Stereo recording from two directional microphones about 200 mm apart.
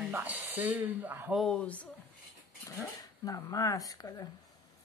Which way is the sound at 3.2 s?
15° left (ahead or behind).